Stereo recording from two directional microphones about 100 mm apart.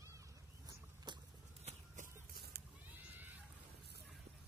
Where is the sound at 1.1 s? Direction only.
50° right (ahead or behind).